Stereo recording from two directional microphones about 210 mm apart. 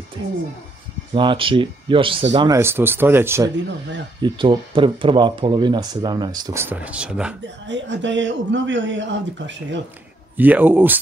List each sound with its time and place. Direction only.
1.1 s speech: 25° right (ahead or behind)
4.2 s speech: 25° right (ahead or behind); by 7.3 s 5° right (ahead or behind)
7.6 s speech: 60° right (ahead or behind)
10.3 s speech: 10° right (ahead or behind)